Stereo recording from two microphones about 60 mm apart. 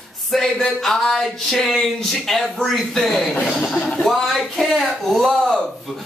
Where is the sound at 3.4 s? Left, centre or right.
Left.